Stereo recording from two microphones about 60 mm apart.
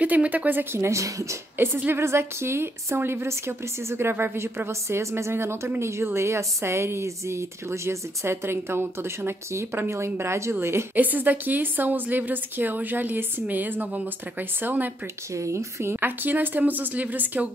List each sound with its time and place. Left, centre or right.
0.0 s a woman's voice: right
0.8 s speech: right
1.6 s a woman's voice: right
11.0 s a woman's voice: right
15.3 s a woman's voice: right